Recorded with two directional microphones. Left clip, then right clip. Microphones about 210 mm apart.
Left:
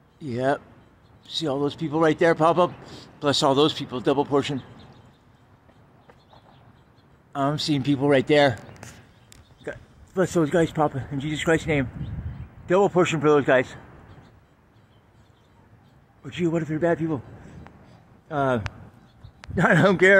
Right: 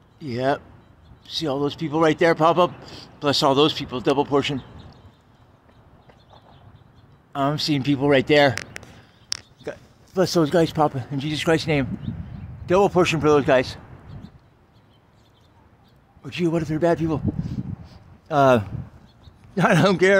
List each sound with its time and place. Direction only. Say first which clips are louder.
0.2 s a man's voice: right 1 dB; centre (ahead or behind)
7.3 s a man's voice: right 2 dB; centre (ahead or behind)
10.3 s speech: right 2 dB; 15° right (ahead or behind)
16.2 s speech: right 2 dB; 15° right (ahead or behind)
18.3 s a man's voice: right 8 dB; 20° right (ahead or behind)
19.5 s speech: right 1 dB; 10° right (ahead or behind)